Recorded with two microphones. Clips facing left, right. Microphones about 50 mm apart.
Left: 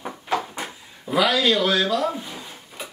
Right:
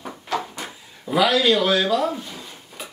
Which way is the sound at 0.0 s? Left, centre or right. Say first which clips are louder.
Left 1 dB; centre.